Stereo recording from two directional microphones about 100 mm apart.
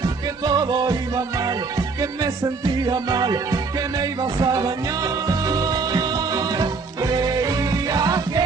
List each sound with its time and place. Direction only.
0.4 s music: 40° right (ahead or behind)